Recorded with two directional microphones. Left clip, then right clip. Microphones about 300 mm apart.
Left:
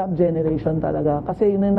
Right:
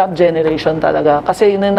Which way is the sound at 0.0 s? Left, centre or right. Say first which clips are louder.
Right 9 dB; centre.